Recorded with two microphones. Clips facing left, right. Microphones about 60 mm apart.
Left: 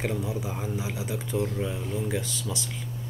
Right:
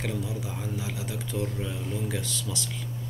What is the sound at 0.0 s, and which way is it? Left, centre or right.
Speech, left.